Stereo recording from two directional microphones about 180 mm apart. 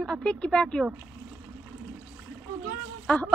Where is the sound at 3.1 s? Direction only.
5° left (ahead or behind).